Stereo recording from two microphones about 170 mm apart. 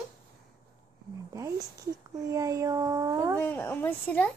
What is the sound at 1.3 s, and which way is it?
Speech, 20° right (ahead or behind).